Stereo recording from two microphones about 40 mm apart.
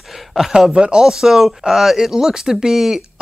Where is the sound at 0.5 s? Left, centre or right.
Centre.